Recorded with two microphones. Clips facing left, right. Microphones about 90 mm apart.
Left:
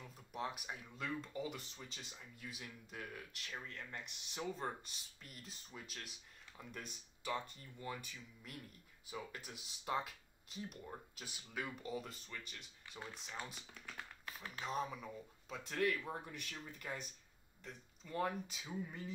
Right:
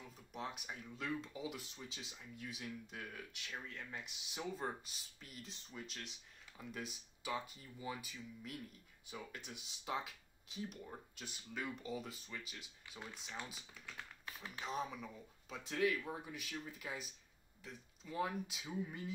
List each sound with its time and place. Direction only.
0.0 s speech: centre (ahead or behind)
14.2 s typing: 15° right (ahead or behind)
14.6 s speech: centre (ahead or behind)